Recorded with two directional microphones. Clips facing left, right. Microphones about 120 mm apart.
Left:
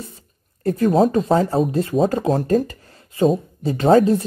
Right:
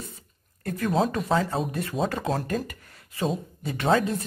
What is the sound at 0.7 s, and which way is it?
A woman's voice, 30° left (ahead or behind).